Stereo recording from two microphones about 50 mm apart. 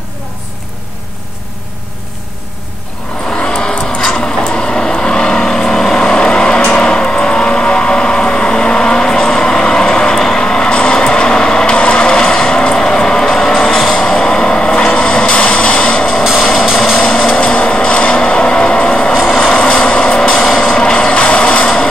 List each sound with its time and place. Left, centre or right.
3.4 s vehicle: centre
4.7 s vehicle: centre
16.3 s vehicle: centre
17.3 s vehicle: centre
19.1 s vehicle: centre
19.5 s vehicle: left
20.3 s vehicle: centre
20.7 s vehicle: centre